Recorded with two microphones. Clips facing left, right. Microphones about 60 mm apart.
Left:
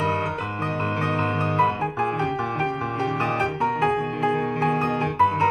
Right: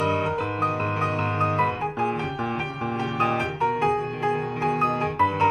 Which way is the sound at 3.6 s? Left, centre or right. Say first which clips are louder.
Right 1 dB; left.